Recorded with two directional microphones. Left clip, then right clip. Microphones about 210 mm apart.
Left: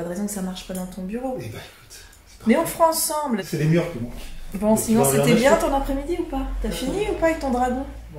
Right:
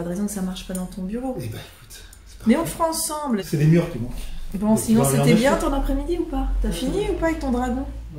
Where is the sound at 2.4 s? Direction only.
Centre (ahead or behind).